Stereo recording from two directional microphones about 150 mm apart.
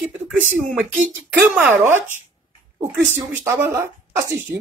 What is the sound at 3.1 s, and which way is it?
Speech, 20° right (ahead or behind).